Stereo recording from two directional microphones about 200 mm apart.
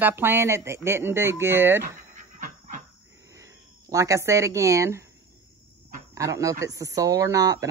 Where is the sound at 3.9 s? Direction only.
15° right (ahead or behind).